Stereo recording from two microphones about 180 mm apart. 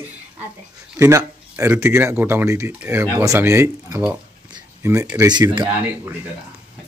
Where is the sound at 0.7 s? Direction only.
15° right (ahead or behind).